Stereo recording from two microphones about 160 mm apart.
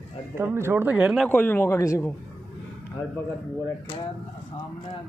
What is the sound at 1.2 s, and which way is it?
Speech, 10° left (ahead or behind).